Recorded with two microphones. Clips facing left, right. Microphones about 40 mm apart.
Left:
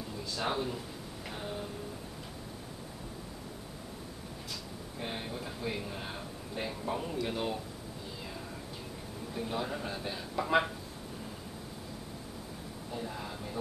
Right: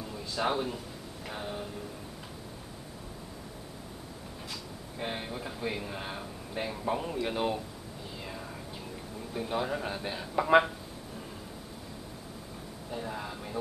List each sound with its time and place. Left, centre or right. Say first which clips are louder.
0.4 s speech: right 4 dB; centre
4.5 s speech: even; centre
8.2 s a sound: right 5 dB; centre
9.3 s speech: right 4 dB; centre
12.9 s speech: right 3 dB; centre